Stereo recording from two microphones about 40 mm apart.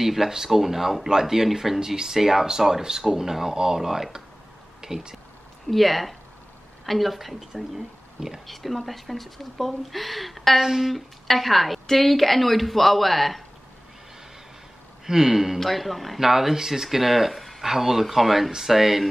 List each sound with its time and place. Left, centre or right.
0.0 s speech: centre
4.8 s a sound: centre
5.7 s speech: centre
11.2 s speech: centre
15.0 s speech: centre
15.6 s speech: centre